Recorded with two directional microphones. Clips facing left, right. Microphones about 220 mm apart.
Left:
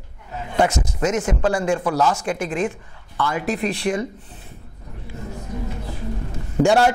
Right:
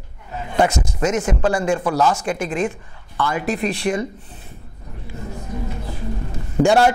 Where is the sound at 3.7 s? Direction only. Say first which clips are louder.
Right 1 dB; 10° right (ahead or behind).